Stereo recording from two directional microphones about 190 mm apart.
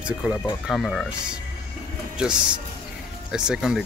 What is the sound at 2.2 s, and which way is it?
Speech, 5° right (ahead or behind).